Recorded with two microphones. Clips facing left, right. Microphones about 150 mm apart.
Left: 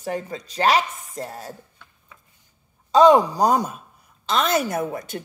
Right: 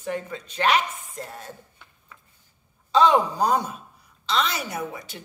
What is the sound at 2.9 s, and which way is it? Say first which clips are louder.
A woman's voice: left 5 dB; 45° left (ahead or behind).